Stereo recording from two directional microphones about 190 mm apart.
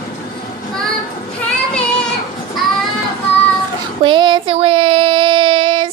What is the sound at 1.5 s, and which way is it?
Child singing, 5° left (ahead or behind).